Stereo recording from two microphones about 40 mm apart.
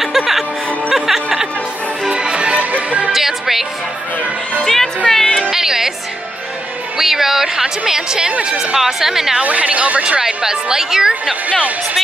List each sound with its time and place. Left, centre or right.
0.0 s music: centre
2.0 s music: right
2.6 s music: right
3.1 s music: centre
4.6 s music: centre
5.5 s music: centre
7.0 s a woman's voice: centre
9.4 s speech: right
10.2 s a woman's voice: centre